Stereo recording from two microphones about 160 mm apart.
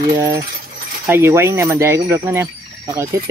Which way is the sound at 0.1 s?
20° right (ahead or behind).